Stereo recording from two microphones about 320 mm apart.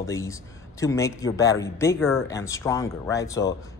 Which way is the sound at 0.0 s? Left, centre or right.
Centre.